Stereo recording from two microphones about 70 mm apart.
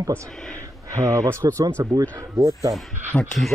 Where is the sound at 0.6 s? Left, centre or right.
Right.